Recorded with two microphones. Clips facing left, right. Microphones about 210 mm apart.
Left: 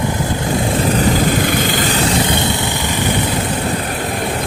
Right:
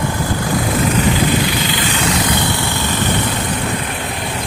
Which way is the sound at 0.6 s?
30° left (ahead or behind).